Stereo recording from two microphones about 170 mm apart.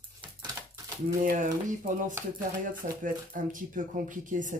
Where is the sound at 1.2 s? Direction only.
50° right (ahead or behind).